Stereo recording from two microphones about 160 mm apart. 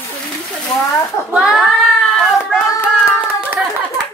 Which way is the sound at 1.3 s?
5° right (ahead or behind).